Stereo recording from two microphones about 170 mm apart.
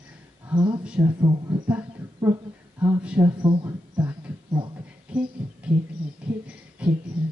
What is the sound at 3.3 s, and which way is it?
Speech, 30° right (ahead or behind).